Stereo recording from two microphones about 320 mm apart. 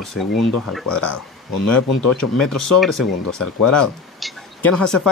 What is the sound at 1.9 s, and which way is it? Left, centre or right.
Speech, left.